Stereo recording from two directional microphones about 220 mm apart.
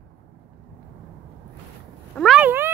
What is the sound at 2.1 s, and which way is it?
Cat, centre (ahead or behind).